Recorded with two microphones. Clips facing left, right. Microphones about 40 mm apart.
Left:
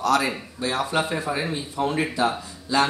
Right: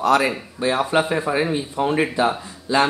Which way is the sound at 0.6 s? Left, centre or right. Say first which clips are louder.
Right 5 dB; right.